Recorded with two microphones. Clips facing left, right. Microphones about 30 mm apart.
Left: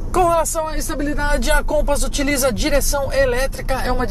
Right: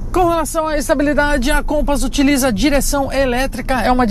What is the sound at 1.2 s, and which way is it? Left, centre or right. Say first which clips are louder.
Speech: right 3 dB; right.